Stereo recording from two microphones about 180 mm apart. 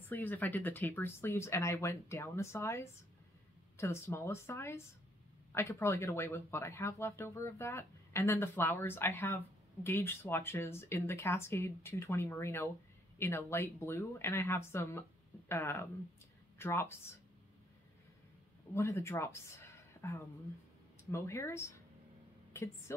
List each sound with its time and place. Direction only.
0.1 s speech: 10° left (ahead or behind)
18.7 s a woman's voice: 15° left (ahead or behind)